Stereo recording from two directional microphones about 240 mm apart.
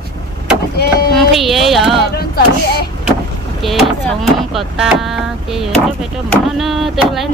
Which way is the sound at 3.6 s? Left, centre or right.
Centre.